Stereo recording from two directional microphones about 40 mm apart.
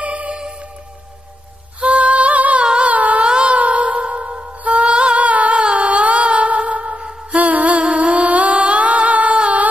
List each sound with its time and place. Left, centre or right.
0.0 s music: right
1.8 s music: right
2.6 s music: right
2.9 s a sound: right
3.3 s music: right
3.5 s music: right